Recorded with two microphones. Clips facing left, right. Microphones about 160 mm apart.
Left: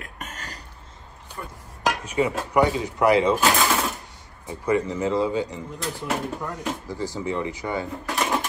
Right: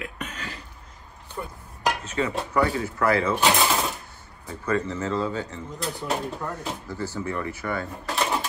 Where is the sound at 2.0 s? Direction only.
15° left (ahead or behind).